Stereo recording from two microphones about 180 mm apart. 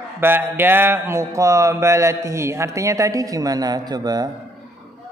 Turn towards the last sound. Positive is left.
turn(degrees=-20)  # may be behind; listen again after turning